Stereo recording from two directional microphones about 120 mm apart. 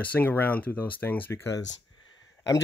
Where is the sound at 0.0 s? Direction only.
15° left (ahead or behind).